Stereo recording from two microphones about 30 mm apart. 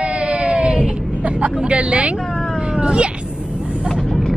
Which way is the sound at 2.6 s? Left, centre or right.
Right.